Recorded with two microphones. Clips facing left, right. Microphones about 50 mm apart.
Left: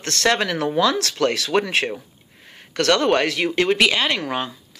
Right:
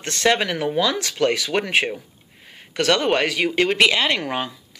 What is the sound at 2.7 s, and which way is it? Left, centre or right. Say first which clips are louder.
Speech: left 1 dB; right.